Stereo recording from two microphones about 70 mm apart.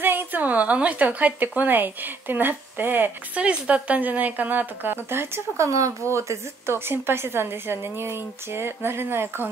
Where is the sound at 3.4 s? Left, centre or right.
Centre.